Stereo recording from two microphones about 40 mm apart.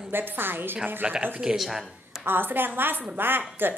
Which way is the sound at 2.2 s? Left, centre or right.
Right.